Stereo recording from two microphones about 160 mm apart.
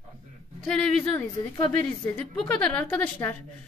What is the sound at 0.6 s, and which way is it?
Speech, 5° left (ahead or behind).